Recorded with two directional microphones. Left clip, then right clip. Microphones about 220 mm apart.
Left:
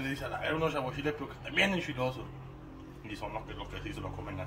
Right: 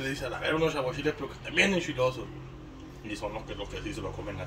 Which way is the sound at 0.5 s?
20° left (ahead or behind).